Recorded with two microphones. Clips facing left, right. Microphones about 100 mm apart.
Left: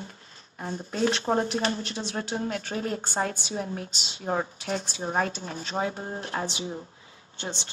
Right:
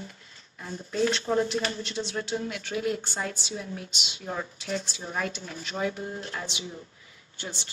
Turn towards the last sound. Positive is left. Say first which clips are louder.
# left 3 dB
turn(degrees=25)  # may be behind; listen again after turning